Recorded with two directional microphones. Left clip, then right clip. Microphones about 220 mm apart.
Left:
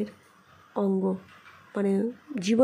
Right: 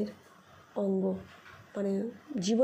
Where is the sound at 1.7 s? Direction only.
20° left (ahead or behind).